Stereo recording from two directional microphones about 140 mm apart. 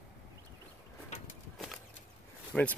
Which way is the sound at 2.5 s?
5° left (ahead or behind).